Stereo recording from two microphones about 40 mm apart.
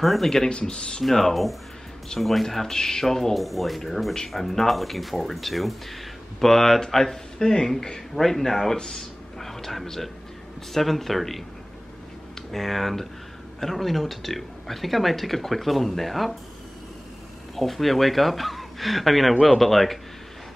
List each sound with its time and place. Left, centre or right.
0.0 s speech: centre
0.5 s speech: left
1.0 s speech: centre
3.3 s speech: centre
17.6 s speech: centre